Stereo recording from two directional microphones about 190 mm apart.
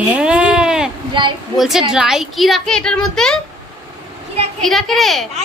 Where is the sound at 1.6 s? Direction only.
Centre (ahead or behind).